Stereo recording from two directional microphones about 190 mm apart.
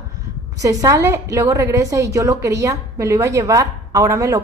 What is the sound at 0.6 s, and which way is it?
A woman's voice, 15° right (ahead or behind).